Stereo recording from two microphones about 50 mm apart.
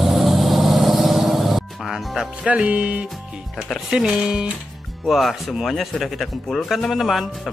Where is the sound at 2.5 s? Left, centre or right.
Right.